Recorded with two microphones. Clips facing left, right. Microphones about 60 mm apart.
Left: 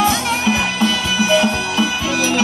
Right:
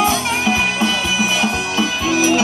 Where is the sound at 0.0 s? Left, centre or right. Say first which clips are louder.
Even; centre.